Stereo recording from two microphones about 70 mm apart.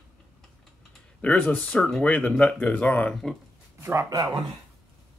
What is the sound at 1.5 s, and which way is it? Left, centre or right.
Speech, centre.